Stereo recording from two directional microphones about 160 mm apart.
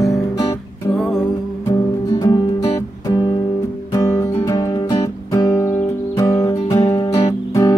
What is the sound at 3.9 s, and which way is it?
Music, 25° left (ahead or behind).